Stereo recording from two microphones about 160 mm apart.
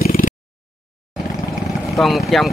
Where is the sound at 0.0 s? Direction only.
65° left (ahead or behind).